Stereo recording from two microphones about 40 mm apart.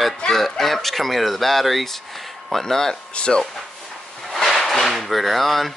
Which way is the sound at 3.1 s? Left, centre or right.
Left.